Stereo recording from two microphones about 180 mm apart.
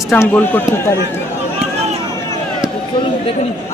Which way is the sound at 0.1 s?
10° left (ahead or behind).